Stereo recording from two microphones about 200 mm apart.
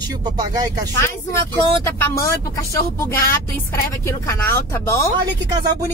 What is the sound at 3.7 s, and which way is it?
A woman's voice, 15° left (ahead or behind).